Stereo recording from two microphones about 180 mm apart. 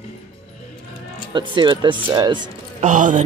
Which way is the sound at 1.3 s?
25° right (ahead or behind).